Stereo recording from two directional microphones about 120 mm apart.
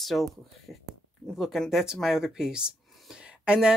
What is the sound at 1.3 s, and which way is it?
Speech, centre (ahead or behind).